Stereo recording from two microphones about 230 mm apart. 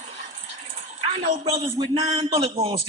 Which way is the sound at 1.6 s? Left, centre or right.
Right.